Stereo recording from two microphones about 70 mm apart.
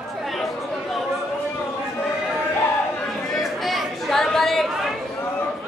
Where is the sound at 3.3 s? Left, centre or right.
Centre.